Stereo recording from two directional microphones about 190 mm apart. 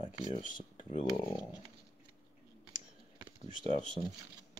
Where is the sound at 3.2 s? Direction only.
30° right (ahead or behind).